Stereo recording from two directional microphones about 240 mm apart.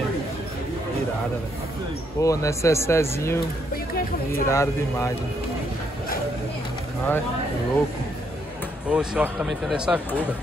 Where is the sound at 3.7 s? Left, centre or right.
Left.